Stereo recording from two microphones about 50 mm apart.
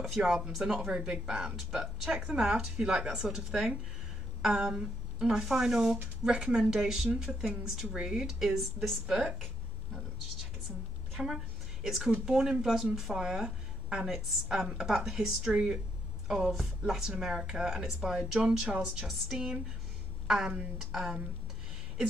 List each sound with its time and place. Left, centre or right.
0.2 s a woman's voice: centre
11.1 s a woman's voice: centre